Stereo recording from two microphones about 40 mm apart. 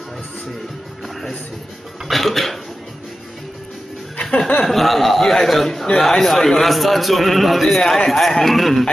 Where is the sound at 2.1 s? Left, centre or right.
Centre.